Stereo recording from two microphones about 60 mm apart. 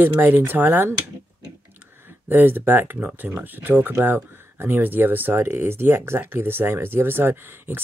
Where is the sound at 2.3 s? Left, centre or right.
Right.